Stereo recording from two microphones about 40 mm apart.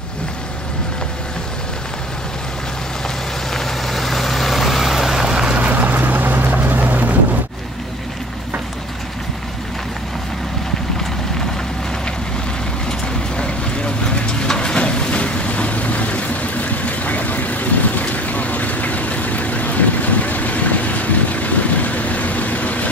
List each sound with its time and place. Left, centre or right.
3.5 s vehicle: centre
5.2 s boat: centre
5.6 s vehicle: right
13.4 s vehicle: left